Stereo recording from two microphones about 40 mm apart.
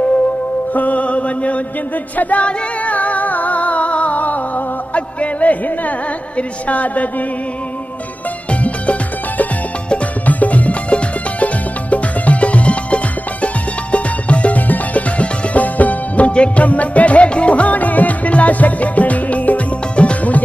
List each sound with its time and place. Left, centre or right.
0.7 s music: left
8.5 s music: left
10.2 s music: left